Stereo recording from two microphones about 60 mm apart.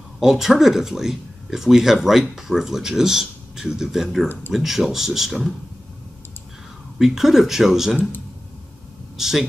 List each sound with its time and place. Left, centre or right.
0.2 s speech: centre
4.3 s speech: left
4.6 s speech: centre
7.0 s speech: centre
9.1 s speech: centre